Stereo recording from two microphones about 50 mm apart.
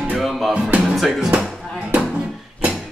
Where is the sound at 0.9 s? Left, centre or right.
Centre.